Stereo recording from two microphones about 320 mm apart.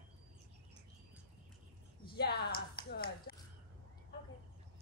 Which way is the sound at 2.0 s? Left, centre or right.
Left.